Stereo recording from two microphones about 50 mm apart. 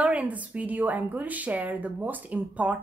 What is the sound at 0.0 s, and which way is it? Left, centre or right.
A woman's voice, right.